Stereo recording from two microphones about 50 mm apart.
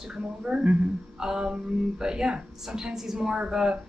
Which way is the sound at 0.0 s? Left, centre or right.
Centre.